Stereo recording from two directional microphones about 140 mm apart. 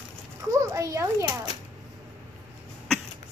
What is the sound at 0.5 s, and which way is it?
A child's voice, 25° right (ahead or behind).